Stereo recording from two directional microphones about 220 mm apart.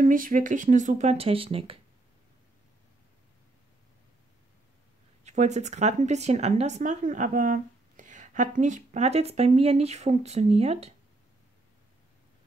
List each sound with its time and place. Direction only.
0.0 s speech: 40° right (ahead or behind)
5.2 s speech: 30° right (ahead or behind)